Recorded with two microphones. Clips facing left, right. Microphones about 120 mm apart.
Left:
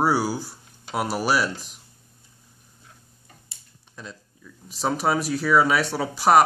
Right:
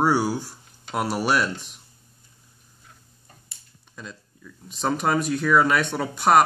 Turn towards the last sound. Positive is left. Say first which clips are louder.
# left 1 dB
turn(degrees=5)  # may be behind; listen again after turning